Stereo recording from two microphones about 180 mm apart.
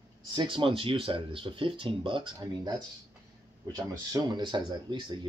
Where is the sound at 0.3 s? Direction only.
25° right (ahead or behind).